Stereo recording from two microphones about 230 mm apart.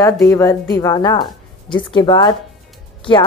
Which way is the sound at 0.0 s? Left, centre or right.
Centre.